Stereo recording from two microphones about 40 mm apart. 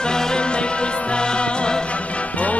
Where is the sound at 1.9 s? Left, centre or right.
Left.